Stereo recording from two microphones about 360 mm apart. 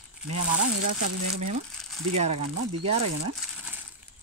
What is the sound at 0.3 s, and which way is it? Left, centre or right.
Speech, right.